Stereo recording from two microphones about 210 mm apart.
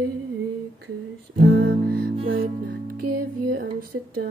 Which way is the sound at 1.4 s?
50° right (ahead or behind).